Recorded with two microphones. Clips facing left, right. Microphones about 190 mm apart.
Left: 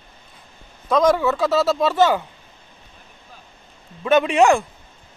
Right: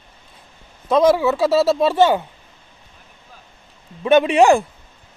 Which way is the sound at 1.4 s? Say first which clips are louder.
Right 4 dB; 30° right (ahead or behind).